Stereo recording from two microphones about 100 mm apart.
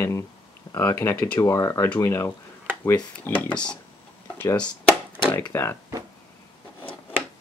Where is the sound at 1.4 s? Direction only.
35° left (ahead or behind).